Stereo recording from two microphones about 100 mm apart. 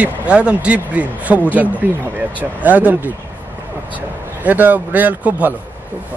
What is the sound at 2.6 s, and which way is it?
Speech, 15° right (ahead or behind).